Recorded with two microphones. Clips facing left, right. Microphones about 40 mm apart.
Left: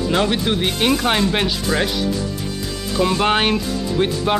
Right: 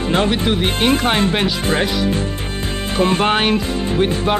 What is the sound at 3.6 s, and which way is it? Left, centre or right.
Speech, right.